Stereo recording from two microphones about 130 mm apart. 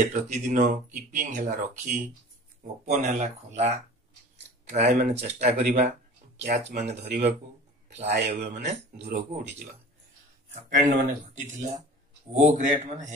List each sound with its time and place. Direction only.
0.0 s speech: 70° right (ahead or behind)
2.9 s speech: 65° right (ahead or behind)
10.5 s speech: 75° right (ahead or behind)